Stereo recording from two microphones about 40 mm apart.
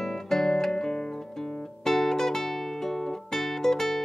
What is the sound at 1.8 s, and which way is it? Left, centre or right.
Music, centre.